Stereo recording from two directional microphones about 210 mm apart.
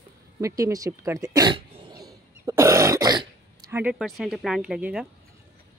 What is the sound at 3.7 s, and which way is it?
Speech, 5° right (ahead or behind).